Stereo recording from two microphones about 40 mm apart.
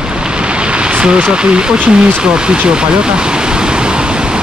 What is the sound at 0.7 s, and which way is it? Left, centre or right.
Speech, right.